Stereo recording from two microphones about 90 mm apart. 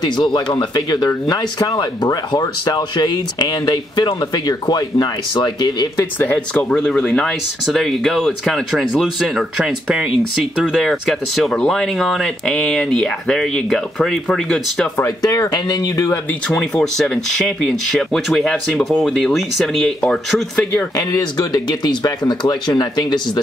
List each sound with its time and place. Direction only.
0.1 s speech: 55° left (ahead or behind)
6.1 s speech: 20° left (ahead or behind)
6.7 s speech: 5° left (ahead or behind)
15.2 s speech: 45° left (ahead or behind)
16.3 s speech: 10° left (ahead or behind)
20.9 s speech: 45° left (ahead or behind)